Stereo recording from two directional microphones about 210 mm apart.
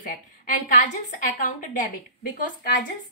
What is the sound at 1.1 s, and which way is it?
A woman's voice, 40° left (ahead or behind).